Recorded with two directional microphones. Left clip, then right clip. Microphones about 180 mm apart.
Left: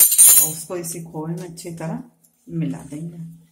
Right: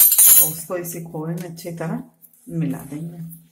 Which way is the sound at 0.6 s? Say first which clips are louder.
Right 2 dB; 15° right (ahead or behind).